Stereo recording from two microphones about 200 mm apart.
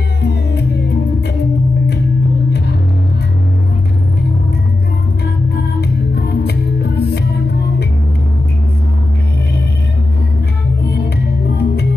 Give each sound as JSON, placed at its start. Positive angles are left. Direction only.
{"t": 0.2, "sound": "music", "side_deg": 55}
{"t": 5.8, "sound": "music", "side_deg": 55}
{"t": 11.5, "sound": "music", "side_deg": 55}